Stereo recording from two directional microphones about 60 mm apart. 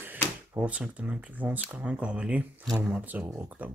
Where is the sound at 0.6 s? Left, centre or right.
Right.